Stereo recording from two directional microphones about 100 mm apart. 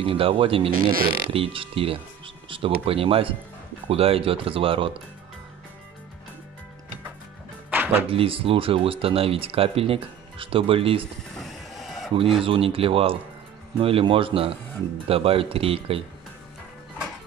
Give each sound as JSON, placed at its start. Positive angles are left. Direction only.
{"t": 0.0, "sound": "speech", "side_deg": -65}
{"t": 8.1, "sound": "speech", "side_deg": -65}
{"t": 11.3, "sound": "music", "side_deg": 0}
{"t": 12.2, "sound": "speech", "side_deg": -65}